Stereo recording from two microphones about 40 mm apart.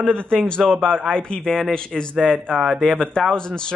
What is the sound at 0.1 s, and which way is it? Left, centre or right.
Speech, left.